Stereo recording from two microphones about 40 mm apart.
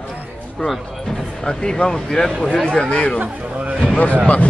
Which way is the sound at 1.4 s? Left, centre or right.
Centre.